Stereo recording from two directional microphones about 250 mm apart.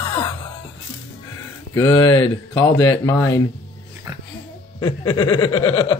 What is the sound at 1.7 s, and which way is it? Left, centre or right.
Speech, centre.